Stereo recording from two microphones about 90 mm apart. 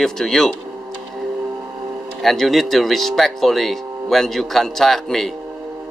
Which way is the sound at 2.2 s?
Centre (ahead or behind).